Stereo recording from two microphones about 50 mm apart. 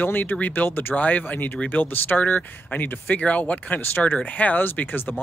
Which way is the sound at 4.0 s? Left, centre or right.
Centre.